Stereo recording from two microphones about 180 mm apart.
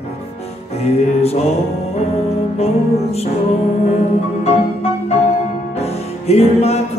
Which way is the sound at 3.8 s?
35° left (ahead or behind).